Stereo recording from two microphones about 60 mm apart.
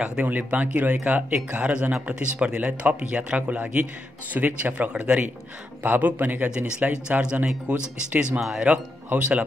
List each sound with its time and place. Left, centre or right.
0.2 s speech: right